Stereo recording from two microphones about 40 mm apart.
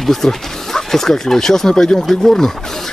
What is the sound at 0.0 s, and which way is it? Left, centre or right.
Speech, centre.